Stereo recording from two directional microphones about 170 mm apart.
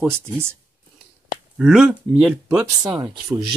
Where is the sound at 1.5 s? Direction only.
Centre (ahead or behind).